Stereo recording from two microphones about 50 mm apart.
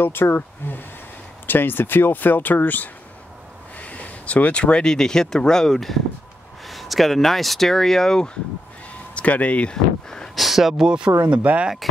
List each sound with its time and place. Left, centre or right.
0.0 s speech: left; by 8.3 s centre
9.1 s speech: left
10.3 s speech: centre
10.9 s speech: centre
11.8 s speech: centre